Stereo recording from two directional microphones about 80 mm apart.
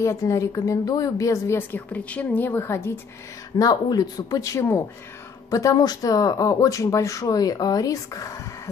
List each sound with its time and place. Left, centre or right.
0.0 s speech: left
1.6 s a woman's voice: left
3.5 s speech: left
4.6 s speech: left
5.5 s speech: left